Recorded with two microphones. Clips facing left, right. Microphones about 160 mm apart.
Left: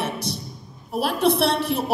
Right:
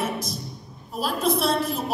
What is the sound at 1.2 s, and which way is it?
Speech, 65° left (ahead or behind).